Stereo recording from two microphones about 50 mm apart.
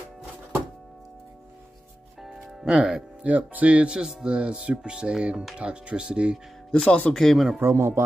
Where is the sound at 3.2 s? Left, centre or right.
Right.